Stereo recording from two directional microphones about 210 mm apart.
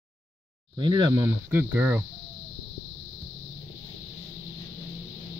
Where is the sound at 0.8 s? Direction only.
20° right (ahead or behind).